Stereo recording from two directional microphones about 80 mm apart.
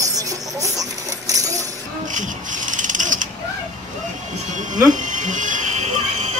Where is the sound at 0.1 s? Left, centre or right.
Right.